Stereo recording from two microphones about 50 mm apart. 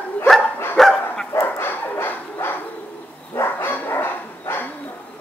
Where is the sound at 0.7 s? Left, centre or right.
Centre.